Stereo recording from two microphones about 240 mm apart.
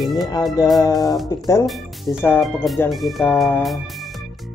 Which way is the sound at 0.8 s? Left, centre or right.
Centre.